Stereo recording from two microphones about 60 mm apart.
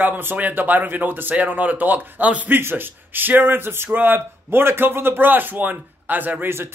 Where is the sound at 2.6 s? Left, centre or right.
Right.